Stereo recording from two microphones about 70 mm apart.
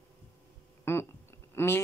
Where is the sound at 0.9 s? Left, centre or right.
Left.